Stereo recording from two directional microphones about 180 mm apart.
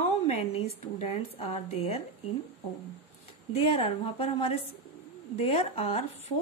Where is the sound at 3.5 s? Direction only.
30° left (ahead or behind).